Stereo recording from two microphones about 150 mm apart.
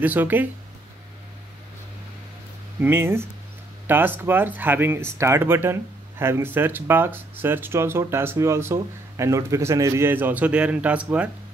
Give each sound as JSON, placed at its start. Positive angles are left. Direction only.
{"t": 0.0, "sound": "speech", "side_deg": -10}
{"t": 2.8, "sound": "speech", "side_deg": -15}